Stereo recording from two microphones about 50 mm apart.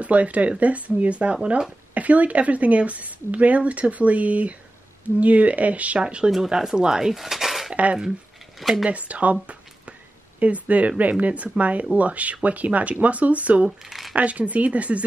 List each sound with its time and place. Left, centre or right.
0.0 s speech: right
2.0 s speech: right
5.9 s speech: centre
6.3 s speech: centre
7.7 s dishes: right
8.5 s speech: centre
8.8 s speech: right
13.7 s cutlery: centre
14.1 s speech: right